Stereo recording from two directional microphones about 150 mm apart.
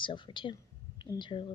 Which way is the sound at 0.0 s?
35° left (ahead or behind).